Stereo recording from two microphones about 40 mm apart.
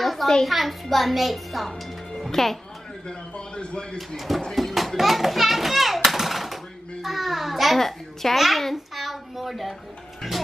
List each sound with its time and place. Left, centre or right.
0.0 s a sound: centre
0.5 s a child's voice: centre
3.1 s speech: left
4.6 s children playing: centre
6.0 s a sound: centre
8.4 s babbling: centre